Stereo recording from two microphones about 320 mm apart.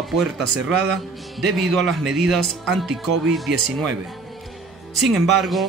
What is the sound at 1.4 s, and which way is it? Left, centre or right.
Speech, centre.